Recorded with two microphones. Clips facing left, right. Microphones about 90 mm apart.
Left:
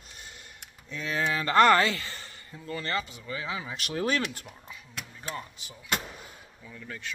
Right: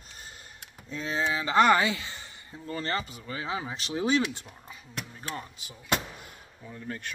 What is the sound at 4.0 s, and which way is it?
Speech, 15° right (ahead or behind).